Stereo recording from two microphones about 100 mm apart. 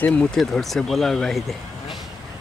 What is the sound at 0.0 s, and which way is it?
Speech, 10° left (ahead or behind).